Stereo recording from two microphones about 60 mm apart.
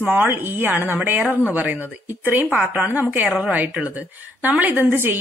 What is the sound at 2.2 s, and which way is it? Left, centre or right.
A woman's voice, right.